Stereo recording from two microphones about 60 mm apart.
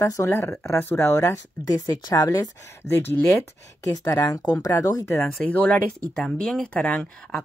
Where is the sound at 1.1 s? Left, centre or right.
Left.